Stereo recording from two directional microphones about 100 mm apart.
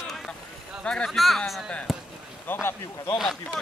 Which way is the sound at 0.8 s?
5° left (ahead or behind).